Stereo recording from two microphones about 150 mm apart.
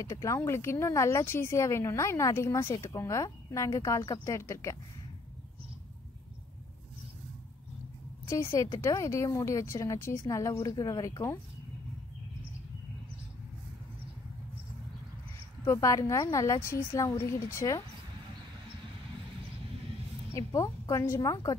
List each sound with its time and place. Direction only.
0.0 s a woman's voice: 20° left (ahead or behind)
8.3 s a woman's voice: 20° left (ahead or behind)
15.6 s a woman's voice: 20° left (ahead or behind)
20.3 s a woman's voice: 20° left (ahead or behind)